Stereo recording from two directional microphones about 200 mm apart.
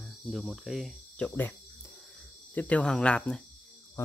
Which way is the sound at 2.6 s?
5° left (ahead or behind).